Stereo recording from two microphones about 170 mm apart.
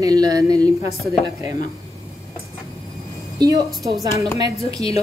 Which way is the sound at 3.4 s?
20° right (ahead or behind).